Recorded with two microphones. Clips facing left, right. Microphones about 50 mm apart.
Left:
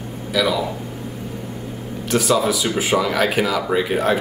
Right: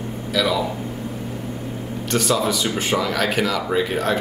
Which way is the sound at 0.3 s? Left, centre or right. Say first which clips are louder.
Left 1 dB; centre.